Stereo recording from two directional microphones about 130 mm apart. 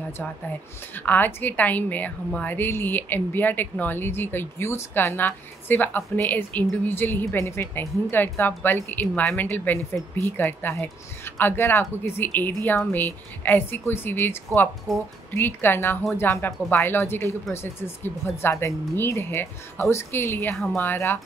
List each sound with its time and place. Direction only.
0.9 s a woman's voice: 15° left (ahead or behind)